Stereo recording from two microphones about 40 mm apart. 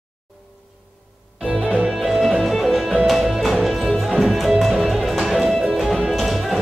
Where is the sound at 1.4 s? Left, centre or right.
Right.